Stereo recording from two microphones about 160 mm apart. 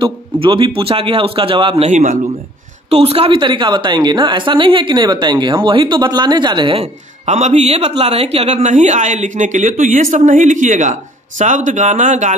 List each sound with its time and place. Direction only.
0.0 s a woman's voice: 30° right (ahead or behind)
1.9 s a man's voice: 50° right (ahead or behind)
2.9 s a woman's voice: 40° right (ahead or behind)